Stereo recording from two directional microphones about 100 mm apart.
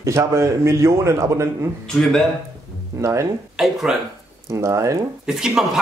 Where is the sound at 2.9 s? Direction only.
30° right (ahead or behind).